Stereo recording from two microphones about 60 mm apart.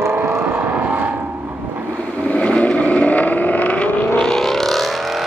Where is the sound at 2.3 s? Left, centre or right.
Left.